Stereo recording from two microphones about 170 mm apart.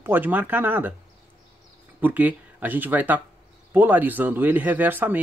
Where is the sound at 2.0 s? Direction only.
10° right (ahead or behind).